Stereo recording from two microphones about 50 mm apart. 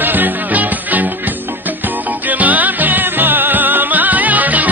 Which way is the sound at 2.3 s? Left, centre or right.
Right.